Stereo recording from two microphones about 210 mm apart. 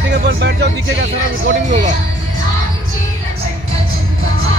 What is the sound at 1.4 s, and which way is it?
Speech, 35° right (ahead or behind).